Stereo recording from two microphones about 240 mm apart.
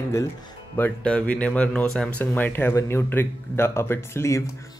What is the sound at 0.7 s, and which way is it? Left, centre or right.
Speech, centre.